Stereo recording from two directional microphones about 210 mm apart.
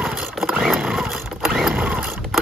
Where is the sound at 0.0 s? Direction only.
Centre (ahead or behind).